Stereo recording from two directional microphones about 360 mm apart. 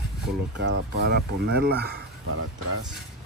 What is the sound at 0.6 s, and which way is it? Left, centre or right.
Speech, right.